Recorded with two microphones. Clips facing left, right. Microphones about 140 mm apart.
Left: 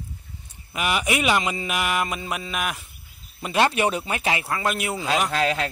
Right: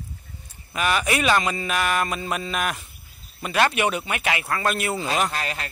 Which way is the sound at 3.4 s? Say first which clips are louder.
Left 1 dB; 25° left (ahead or behind).